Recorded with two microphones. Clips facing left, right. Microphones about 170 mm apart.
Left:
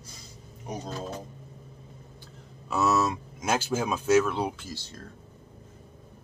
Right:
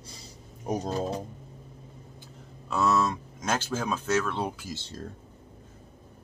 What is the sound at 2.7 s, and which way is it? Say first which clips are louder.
Speech: even; 5° left (ahead or behind).